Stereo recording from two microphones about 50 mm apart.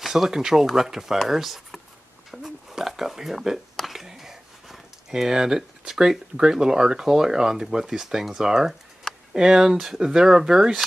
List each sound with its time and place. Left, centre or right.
0.0 s speech: centre
2.3 s a sound: centre
3.8 s speech: centre